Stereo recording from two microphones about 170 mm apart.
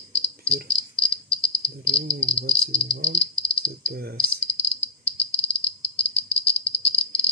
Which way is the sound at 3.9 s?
65° right (ahead or behind).